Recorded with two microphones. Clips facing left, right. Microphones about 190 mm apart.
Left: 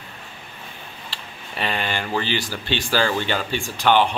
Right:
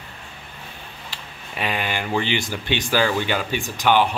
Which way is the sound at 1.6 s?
10° right (ahead or behind).